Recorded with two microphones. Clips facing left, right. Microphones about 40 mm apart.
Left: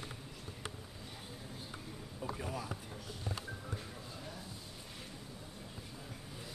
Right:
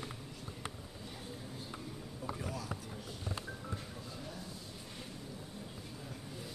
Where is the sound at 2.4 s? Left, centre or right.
Centre.